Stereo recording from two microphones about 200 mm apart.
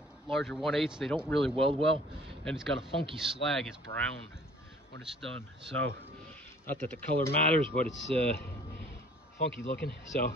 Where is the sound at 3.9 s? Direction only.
30° left (ahead or behind).